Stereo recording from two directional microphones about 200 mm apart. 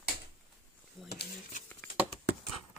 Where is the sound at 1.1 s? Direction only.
55° left (ahead or behind).